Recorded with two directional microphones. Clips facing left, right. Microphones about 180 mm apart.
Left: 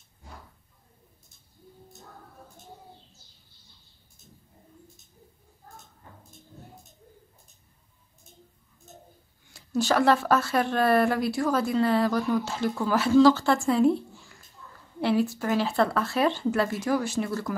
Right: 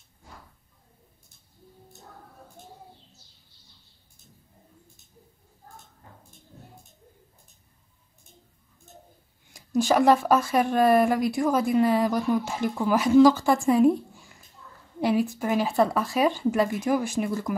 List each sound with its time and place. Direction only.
9.5 s speech: 15° right (ahead or behind)